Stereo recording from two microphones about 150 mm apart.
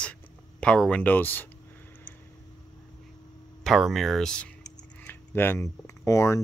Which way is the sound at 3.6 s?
Centre (ahead or behind).